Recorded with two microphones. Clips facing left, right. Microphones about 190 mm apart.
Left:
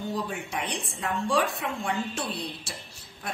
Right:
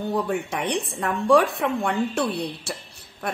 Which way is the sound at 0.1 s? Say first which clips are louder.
Right 7 dB; 60° right (ahead or behind).